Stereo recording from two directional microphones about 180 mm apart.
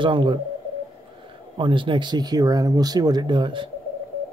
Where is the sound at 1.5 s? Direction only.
25° right (ahead or behind).